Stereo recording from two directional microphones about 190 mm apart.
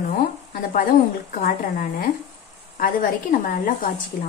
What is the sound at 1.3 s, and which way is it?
Speech, 45° left (ahead or behind).